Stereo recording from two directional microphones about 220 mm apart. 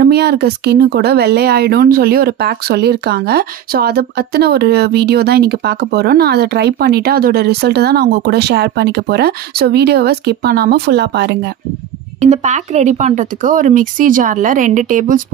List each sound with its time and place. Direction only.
0.0 s speech: 45° right (ahead or behind)
12.2 s speech: 30° right (ahead or behind)